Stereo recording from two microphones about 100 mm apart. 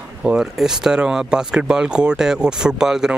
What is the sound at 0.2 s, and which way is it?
Speech, 5° right (ahead or behind).